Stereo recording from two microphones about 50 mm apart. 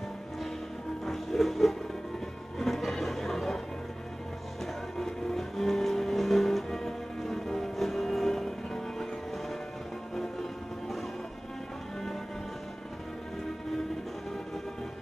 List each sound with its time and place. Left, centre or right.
1.0 s music: centre
4.9 s music: centre